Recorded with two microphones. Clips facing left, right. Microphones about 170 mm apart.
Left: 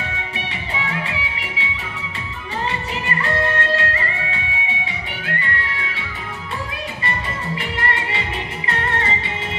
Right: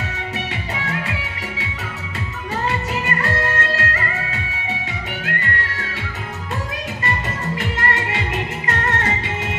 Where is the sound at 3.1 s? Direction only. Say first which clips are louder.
Left 3 dB; 40° right (ahead or behind).